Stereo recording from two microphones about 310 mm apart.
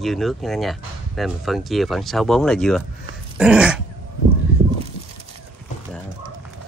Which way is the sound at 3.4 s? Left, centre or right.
Centre.